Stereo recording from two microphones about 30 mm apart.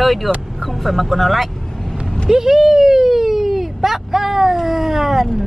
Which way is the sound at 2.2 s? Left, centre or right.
Centre.